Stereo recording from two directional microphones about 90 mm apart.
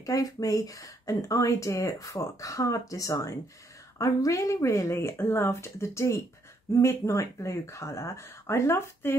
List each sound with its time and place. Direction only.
0.0 s speech: 40° left (ahead or behind)